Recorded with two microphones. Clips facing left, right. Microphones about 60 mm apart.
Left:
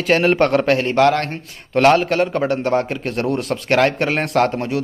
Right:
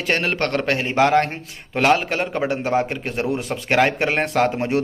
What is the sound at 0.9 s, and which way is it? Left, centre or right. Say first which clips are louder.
Speech: even; centre.